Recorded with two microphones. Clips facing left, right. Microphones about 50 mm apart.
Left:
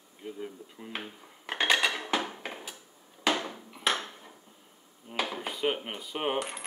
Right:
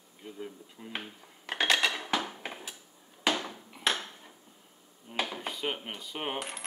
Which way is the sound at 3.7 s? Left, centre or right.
Centre.